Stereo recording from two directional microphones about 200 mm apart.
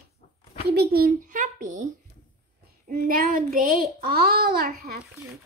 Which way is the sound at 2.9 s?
45° right (ahead or behind).